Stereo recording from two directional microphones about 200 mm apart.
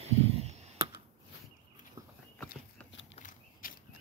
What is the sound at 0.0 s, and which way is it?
Clicking, 30° right (ahead or behind).